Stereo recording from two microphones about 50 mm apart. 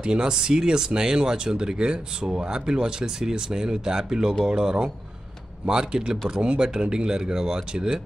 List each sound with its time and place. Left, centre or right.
0.0 s speech: centre